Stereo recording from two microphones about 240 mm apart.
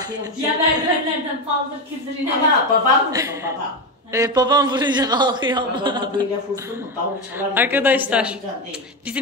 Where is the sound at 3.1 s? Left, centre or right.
Centre.